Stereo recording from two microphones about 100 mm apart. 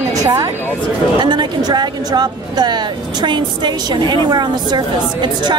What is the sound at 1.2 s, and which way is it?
Speech, 50° right (ahead or behind).